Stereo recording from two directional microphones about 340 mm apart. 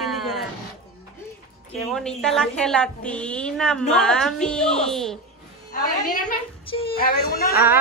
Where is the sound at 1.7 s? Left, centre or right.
Centre.